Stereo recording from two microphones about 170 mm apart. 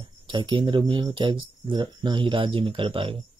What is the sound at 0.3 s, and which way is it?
Speech, 30° right (ahead or behind).